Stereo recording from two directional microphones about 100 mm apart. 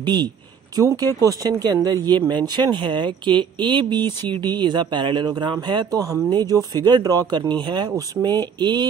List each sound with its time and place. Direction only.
0.0 s speech: 45° right (ahead or behind)
5.9 s speech: 35° right (ahead or behind)